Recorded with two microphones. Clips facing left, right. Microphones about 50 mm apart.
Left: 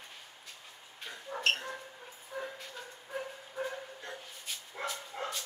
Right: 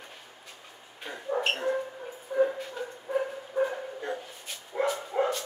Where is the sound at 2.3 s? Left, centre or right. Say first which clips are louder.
Right 15 dB; centre.